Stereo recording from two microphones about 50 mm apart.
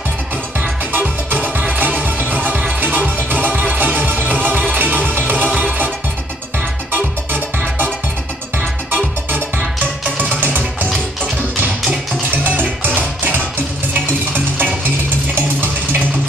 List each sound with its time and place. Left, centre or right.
0.6 s music: right
6.9 s music: right
12.3 s music: right
15.3 s a sound: right